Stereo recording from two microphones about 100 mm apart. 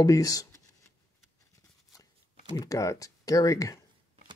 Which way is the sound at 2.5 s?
35° left (ahead or behind).